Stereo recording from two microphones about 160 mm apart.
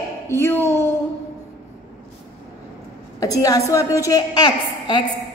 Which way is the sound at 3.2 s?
20° left (ahead or behind).